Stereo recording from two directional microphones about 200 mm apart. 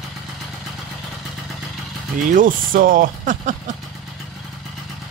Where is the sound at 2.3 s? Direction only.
45° right (ahead or behind).